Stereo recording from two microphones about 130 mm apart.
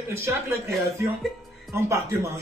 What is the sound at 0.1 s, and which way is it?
Speech, 20° right (ahead or behind).